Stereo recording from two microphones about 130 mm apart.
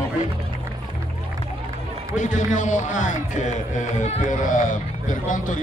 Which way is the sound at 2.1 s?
75° left (ahead or behind).